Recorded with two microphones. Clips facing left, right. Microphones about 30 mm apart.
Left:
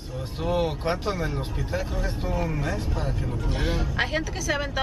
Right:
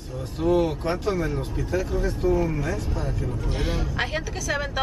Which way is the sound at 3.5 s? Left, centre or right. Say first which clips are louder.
Left 1 dB; centre.